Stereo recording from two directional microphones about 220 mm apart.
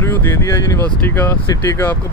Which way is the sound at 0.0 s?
10° left (ahead or behind).